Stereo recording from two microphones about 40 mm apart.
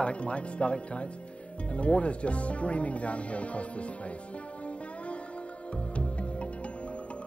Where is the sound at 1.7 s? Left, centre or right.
Left.